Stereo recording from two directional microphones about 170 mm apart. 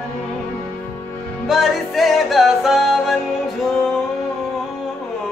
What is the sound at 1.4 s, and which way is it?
Music, centre (ahead or behind).